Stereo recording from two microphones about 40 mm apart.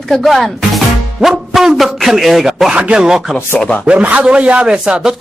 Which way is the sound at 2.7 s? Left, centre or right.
Right.